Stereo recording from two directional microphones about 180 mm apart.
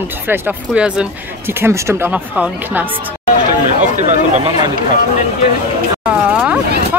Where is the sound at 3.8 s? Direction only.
40° right (ahead or behind).